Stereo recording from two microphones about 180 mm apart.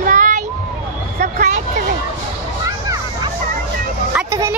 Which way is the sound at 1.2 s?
45° right (ahead or behind).